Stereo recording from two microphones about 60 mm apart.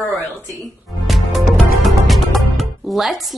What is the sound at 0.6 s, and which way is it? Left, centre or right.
Music, centre.